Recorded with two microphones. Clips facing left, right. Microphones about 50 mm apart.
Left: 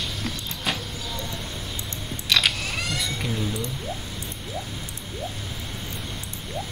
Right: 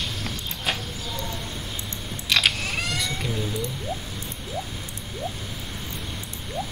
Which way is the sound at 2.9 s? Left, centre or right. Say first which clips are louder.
Even; centre.